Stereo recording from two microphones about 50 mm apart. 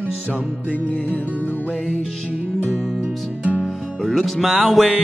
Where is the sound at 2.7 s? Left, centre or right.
Centre.